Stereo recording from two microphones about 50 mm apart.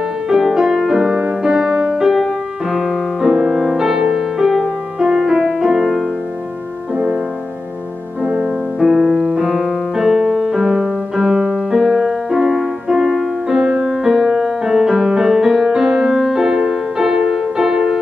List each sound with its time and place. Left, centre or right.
0.3 s music: centre
8.2 s music: centre